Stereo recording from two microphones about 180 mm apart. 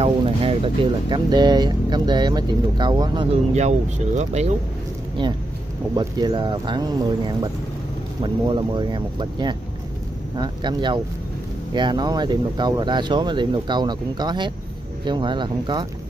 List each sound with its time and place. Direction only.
0.0 s speech: 30° right (ahead or behind)
3.5 s speech: 40° right (ahead or behind)
5.9 s speech: 25° right (ahead or behind)